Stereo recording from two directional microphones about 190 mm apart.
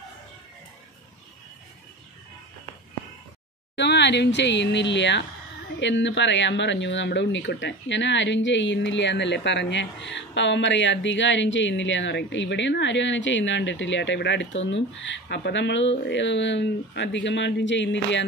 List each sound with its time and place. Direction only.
3.7 s speech: 65° left (ahead or behind)